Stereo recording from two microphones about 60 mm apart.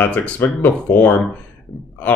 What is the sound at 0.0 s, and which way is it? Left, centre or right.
Speech, left.